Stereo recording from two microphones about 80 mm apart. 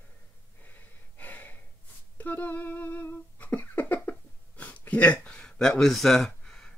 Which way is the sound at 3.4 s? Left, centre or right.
Left.